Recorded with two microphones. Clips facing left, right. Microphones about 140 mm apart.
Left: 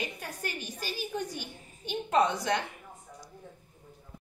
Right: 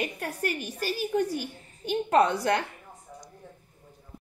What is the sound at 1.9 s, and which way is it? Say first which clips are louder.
Speech: right 4 dB; 55° right (ahead or behind).